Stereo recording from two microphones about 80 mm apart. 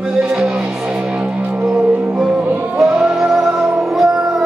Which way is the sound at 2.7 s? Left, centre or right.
Centre.